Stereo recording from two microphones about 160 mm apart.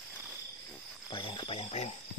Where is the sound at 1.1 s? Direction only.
30° left (ahead or behind).